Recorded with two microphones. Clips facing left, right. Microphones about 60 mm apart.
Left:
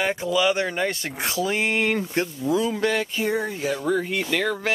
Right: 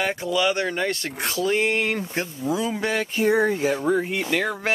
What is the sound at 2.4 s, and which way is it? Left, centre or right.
Speech, centre.